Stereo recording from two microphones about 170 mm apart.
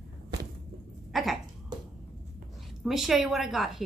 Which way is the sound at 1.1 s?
Centre (ahead or behind).